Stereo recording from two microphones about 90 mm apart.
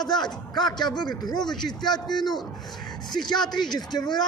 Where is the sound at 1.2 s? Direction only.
50° left (ahead or behind).